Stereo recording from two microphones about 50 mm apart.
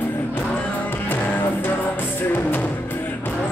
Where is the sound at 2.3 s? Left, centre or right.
Left.